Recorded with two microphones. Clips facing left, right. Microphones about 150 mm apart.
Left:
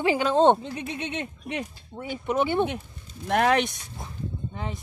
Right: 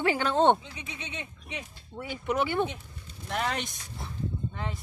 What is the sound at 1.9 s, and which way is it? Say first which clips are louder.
Speech: left 3 dB; 20° left (ahead or behind).